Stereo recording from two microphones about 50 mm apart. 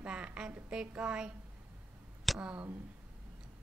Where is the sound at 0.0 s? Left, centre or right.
Right.